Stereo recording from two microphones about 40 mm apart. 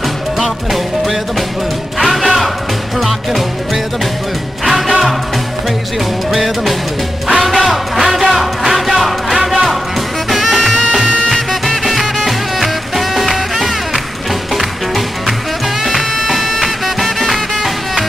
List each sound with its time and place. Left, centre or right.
2.0 s music: centre
6.3 s music: centre
10.9 s music: right
11.2 s music: centre
15.8 s music: centre